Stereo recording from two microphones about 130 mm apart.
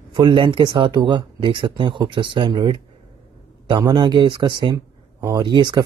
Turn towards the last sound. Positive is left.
turn(degrees=-40)  # may be behind; listen again after turning